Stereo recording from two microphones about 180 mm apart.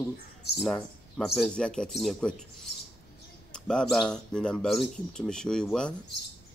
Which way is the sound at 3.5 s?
5° left (ahead or behind).